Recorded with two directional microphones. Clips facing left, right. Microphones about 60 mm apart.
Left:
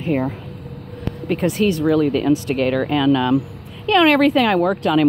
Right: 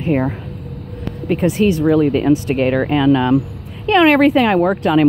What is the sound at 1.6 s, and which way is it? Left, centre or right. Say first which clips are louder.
Speech: right 3 dB; centre.